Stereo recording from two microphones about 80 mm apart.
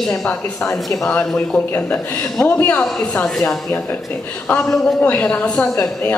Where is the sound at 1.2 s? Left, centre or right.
Centre.